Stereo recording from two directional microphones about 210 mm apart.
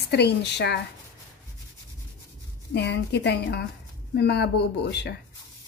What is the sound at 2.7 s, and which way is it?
Speech, 55° left (ahead or behind).